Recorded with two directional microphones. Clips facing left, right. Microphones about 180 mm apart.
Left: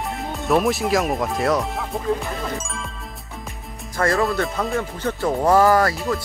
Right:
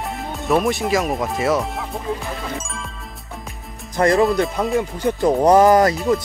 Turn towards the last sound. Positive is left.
turn(degrees=-20)  # may be behind; listen again after turning